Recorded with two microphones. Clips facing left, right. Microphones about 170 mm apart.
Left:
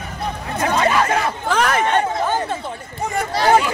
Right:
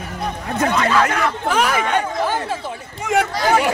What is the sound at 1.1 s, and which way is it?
Speech, 25° left (ahead or behind).